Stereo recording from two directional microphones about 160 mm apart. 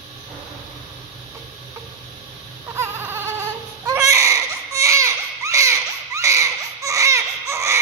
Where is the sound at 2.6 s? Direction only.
15° right (ahead or behind).